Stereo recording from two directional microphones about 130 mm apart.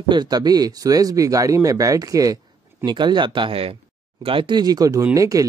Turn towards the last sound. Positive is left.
turn(degrees=-25)  # may be behind; listen again after turning